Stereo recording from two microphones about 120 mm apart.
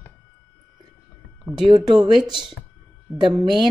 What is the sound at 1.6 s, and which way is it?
Speech, 35° right (ahead or behind).